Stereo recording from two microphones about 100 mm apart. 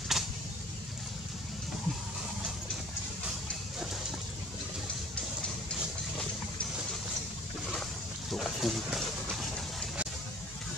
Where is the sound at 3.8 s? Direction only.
5° right (ahead or behind).